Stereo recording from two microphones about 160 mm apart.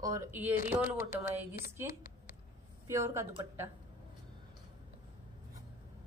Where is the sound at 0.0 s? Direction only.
15° right (ahead or behind).